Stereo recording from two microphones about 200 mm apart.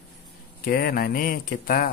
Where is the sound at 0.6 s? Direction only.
50° left (ahead or behind).